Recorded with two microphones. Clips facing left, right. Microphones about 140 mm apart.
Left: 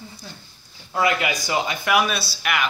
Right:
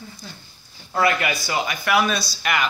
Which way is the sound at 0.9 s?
15° left (ahead or behind).